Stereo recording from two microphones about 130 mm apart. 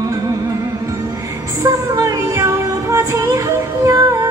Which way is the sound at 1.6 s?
25° right (ahead or behind).